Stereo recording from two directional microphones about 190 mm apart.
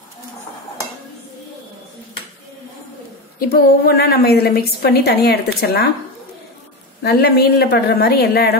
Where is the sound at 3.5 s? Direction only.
55° left (ahead or behind).